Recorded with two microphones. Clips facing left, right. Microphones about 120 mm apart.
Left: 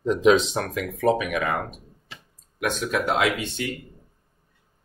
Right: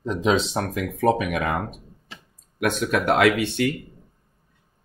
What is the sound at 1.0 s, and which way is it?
Speech, 45° right (ahead or behind).